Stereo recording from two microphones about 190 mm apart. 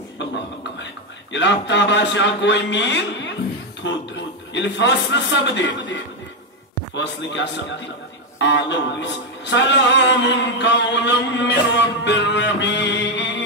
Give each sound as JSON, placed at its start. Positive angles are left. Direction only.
{"t": 1.3, "sound": "music", "side_deg": 70}
{"t": 4.6, "sound": "music", "side_deg": 70}
{"t": 7.0, "sound": "music", "side_deg": 65}